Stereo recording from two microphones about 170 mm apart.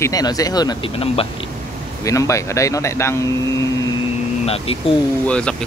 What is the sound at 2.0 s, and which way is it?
Speech, 20° left (ahead or behind).